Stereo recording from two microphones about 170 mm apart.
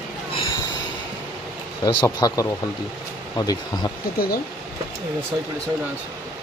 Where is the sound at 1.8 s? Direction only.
30° left (ahead or behind).